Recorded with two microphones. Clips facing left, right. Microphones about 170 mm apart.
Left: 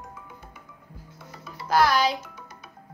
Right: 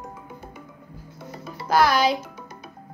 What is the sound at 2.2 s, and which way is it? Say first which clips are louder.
Music: right 5 dB; 35° right (ahead or behind).